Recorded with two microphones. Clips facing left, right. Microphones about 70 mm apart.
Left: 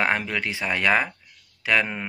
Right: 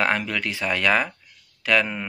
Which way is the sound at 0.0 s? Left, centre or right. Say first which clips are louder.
Right 1 dB; left.